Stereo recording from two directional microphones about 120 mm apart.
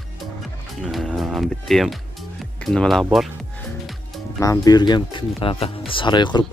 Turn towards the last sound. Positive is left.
turn(degrees=40)  # may be behind; listen again after turning